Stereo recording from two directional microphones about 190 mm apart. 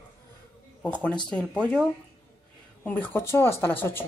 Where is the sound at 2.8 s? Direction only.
10° left (ahead or behind).